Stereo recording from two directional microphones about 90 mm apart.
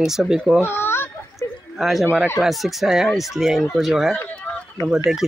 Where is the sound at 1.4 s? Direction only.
25° left (ahead or behind).